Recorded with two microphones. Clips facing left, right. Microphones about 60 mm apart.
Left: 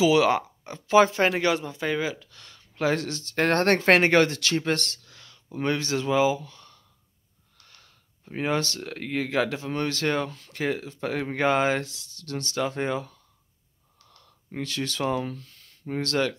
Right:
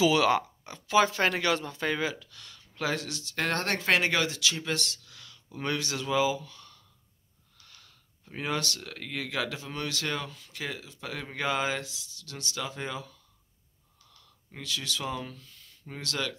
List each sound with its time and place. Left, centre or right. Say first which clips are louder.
0.0 s speech: left 3 dB; centre
2.3 s a sound: left 5 dB; left
3.0 s speech: left 7 dB; left
7.8 s a sound: left 4 dB; left
8.5 s speech: left 5 dB; left
14.2 s speech: left 8 dB; left